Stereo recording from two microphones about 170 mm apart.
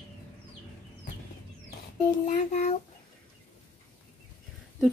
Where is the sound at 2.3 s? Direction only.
45° left (ahead or behind).